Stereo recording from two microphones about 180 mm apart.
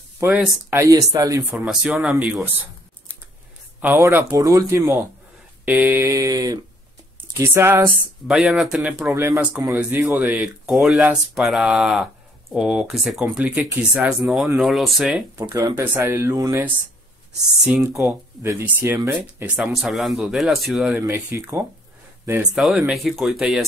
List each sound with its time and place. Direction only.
0.2 s speech: 5° right (ahead or behind)
1.5 s speech: 5° right (ahead or behind)
3.8 s speech: 10° right (ahead or behind)
8.3 s speech: centre (ahead or behind)
9.1 s speech: 15° right (ahead or behind)
10.7 s speech: centre (ahead or behind)
15.4 s speech: 20° right (ahead or behind)
18.4 s speech: 15° right (ahead or behind)
21.0 s speech: 15° right (ahead or behind)
22.6 s speech: centre (ahead or behind)